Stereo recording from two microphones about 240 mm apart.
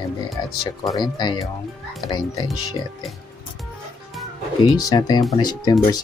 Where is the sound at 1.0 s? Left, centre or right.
Centre.